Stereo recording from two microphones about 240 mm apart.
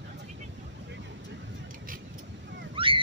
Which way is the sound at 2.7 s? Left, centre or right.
Right.